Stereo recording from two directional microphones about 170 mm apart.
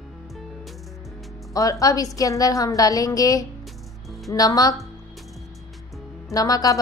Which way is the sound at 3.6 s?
Centre (ahead or behind).